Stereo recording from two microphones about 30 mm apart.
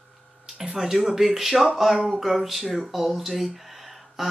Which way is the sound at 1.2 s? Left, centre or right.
Centre.